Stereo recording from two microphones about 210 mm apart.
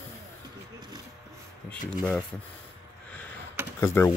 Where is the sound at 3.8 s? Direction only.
10° left (ahead or behind).